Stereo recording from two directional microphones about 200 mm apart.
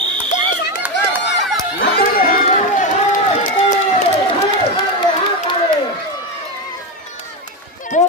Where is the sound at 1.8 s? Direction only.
50° left (ahead or behind).